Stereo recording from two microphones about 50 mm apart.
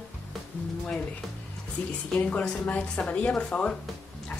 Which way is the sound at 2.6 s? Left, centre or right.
Left.